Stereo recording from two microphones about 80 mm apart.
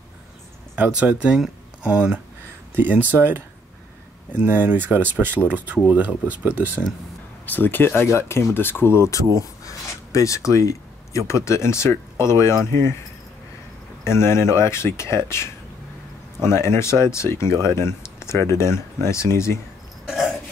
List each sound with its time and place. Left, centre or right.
0.7 s speech: centre
4.5 s speech: right
7.4 s speech: left
9.4 s speech: left
14.0 s speech: left